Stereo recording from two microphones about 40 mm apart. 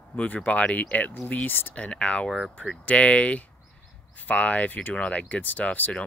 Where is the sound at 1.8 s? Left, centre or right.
Left.